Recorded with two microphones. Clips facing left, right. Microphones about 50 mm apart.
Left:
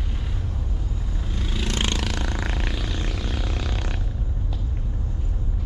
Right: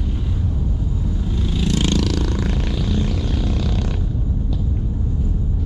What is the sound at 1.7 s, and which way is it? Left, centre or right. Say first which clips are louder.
Vehicle: right 7 dB; left.